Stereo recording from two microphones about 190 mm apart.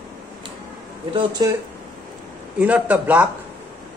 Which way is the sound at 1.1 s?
20° right (ahead or behind).